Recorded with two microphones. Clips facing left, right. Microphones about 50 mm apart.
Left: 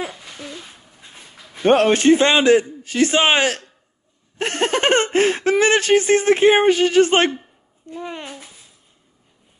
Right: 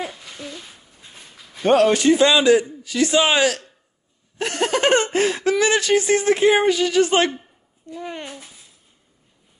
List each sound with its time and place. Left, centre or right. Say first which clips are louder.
0.0 s babbling: left 1 dB; centre
1.5 s speech: left 1 dB; left
8.0 s speech: left 1 dB; centre